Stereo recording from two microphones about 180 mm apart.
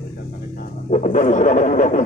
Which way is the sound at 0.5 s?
45° left (ahead or behind).